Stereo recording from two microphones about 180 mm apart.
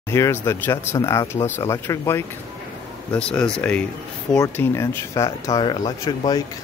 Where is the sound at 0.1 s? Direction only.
15° left (ahead or behind).